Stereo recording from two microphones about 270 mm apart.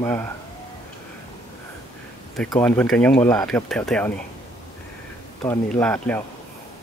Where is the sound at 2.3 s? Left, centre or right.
Centre.